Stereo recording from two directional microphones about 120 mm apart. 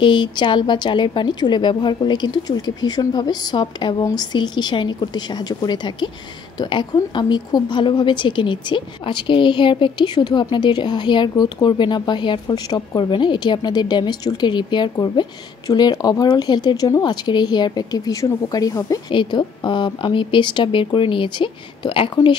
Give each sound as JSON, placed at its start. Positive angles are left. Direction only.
{"t": 0.0, "sound": "speech", "side_deg": 40}
{"t": 19.0, "sound": "speech", "side_deg": 40}